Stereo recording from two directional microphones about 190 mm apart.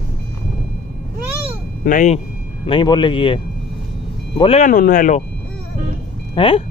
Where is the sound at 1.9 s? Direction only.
40° left (ahead or behind).